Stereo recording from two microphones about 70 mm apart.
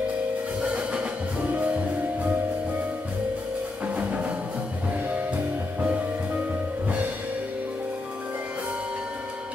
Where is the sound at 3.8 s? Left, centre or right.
Centre.